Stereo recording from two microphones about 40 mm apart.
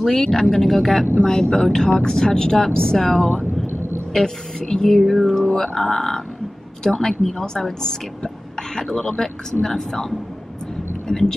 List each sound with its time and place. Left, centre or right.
0.0 s speech: centre
5.6 s speech: centre